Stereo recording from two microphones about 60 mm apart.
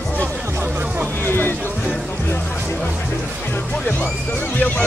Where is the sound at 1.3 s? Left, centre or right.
Left.